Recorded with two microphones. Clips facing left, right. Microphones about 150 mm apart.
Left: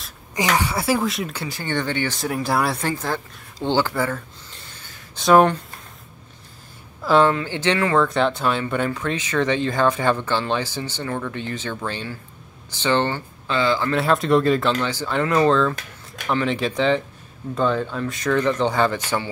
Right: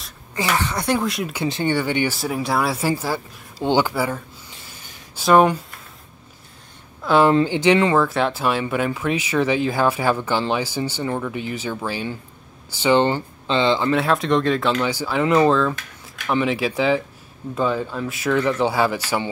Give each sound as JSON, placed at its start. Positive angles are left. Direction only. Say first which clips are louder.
{"t": 0.3, "sound": "speech", "louder": "left 1 dB", "side_deg": 15}
{"t": 1.3, "sound": "speech", "louder": "right 5 dB", "side_deg": -20}
{"t": 7.0, "sound": "speech", "louder": "even", "side_deg": 0}
{"t": 7.4, "sound": "speech", "louder": "right 5 dB", "side_deg": -15}
{"t": 13.9, "sound": "speech", "louder": "left 1 dB", "side_deg": 0}
{"t": 14.8, "sound": "speech", "louder": "right 2 dB", "side_deg": -10}